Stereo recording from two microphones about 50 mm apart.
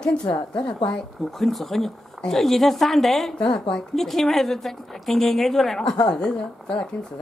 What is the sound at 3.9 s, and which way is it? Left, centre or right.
Speech, centre.